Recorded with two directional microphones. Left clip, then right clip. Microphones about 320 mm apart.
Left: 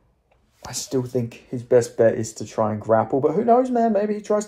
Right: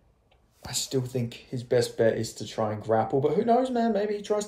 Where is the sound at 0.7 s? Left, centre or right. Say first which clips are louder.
Left 5 dB; left.